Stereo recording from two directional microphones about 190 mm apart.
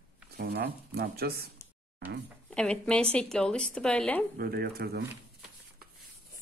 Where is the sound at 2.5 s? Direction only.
5° left (ahead or behind).